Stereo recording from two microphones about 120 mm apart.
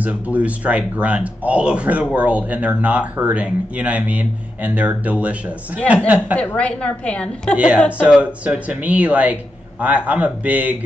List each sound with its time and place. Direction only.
0.0 s speech: 10° right (ahead or behind)
6.3 s a woman's voice: 10° left (ahead or behind)
7.5 s speech: 10° right (ahead or behind)